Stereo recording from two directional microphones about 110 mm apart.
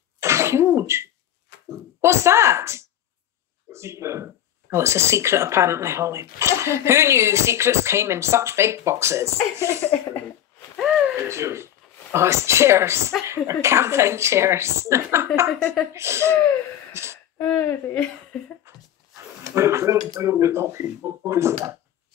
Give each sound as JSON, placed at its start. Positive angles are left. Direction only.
{"t": 0.2, "sound": "cough", "side_deg": -25}
{"t": 1.7, "sound": "speech", "side_deg": -25}
{"t": 10.8, "sound": "a sound", "side_deg": -5}
{"t": 11.2, "sound": "speech", "side_deg": -25}
{"t": 15.6, "sound": "speech", "side_deg": 5}
{"t": 15.9, "sound": "speech", "side_deg": -25}
{"t": 16.9, "sound": "a sound", "side_deg": -25}
{"t": 17.4, "sound": "speech", "side_deg": 15}
{"t": 18.6, "sound": "dishes", "side_deg": -25}
{"t": 20.2, "sound": "speech", "side_deg": -25}